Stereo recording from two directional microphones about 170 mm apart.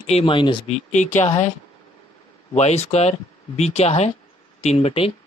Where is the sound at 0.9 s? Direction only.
45° left (ahead or behind).